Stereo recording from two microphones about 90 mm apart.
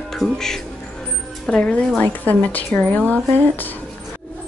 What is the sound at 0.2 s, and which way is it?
A woman's voice, 5° left (ahead or behind).